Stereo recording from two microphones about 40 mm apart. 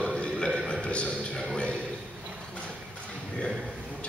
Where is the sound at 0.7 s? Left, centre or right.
Left.